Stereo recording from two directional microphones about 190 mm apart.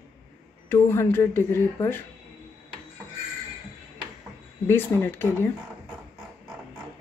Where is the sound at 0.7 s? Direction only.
15° left (ahead or behind).